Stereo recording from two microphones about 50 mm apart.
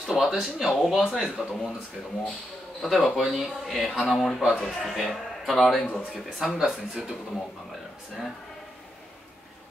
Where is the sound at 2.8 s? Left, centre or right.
Centre.